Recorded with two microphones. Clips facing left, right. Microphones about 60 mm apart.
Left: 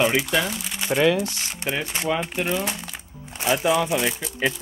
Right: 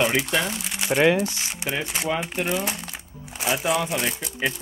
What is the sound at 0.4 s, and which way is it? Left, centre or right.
Speech, centre.